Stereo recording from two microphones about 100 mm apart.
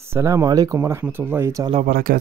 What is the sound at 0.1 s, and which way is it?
Speech, 30° right (ahead or behind).